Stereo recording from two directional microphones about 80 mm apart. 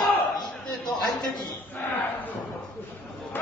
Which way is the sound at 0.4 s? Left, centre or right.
Left.